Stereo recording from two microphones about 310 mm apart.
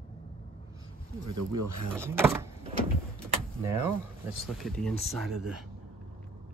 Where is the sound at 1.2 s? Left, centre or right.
Right.